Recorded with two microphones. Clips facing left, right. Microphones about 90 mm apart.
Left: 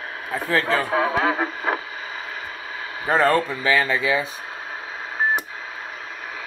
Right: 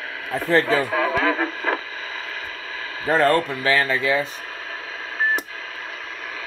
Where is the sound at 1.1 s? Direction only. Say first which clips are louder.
Even; 20° left (ahead or behind).